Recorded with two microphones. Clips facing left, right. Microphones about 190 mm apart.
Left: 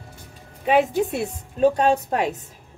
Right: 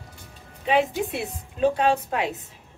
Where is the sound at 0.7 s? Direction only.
45° left (ahead or behind).